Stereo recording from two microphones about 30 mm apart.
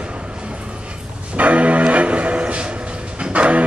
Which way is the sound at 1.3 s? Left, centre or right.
Right.